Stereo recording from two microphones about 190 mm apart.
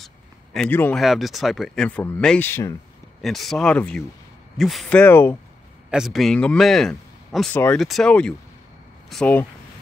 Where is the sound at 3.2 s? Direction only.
Centre (ahead or behind).